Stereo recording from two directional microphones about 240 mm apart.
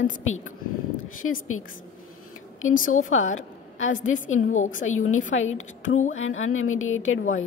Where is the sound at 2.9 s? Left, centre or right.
Left.